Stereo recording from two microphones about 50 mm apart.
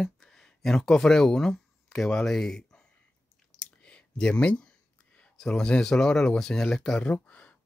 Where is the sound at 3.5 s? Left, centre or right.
Left.